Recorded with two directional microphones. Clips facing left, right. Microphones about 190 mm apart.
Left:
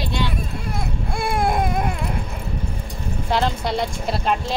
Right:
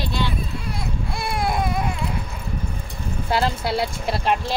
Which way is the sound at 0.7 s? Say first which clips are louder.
Left 2 dB; 50° left (ahead or behind).